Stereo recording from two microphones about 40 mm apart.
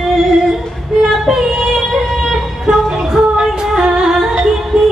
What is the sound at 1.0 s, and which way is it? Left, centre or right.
Music, centre.